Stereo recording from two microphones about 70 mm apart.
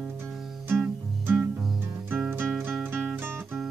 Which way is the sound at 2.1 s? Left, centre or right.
Right.